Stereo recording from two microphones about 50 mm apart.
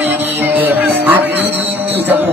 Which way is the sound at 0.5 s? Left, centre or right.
Right.